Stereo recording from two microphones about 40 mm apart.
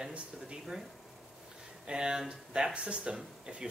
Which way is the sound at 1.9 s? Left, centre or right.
Right.